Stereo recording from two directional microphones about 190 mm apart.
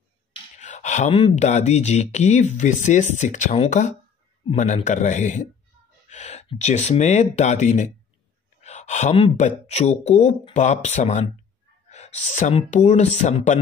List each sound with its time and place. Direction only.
0.6 s speech: 40° left (ahead or behind)